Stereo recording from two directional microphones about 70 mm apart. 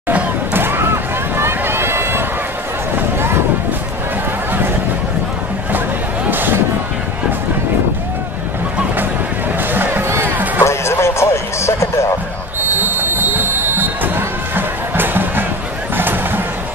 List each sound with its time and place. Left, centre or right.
0.1 s run: right
6.3 s music: right
10.0 s music: right
10.3 s music: right
10.6 s music: left
12.6 s music: right
16.0 s a sound: right